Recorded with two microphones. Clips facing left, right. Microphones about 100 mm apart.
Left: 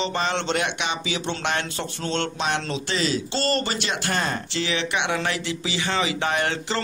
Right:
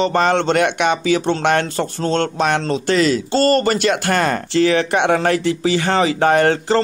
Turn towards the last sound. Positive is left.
turn(degrees=-45)  # may be behind; listen again after turning